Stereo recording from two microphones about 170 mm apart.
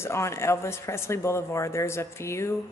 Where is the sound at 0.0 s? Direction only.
15° left (ahead or behind).